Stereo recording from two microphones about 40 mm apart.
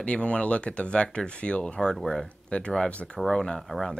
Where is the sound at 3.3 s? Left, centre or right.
Centre.